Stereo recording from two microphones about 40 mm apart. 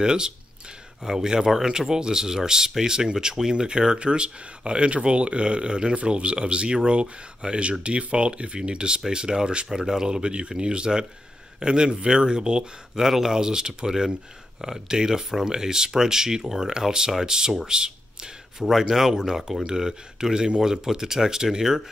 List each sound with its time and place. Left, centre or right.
0.0 s speech: centre
13.0 s speech: centre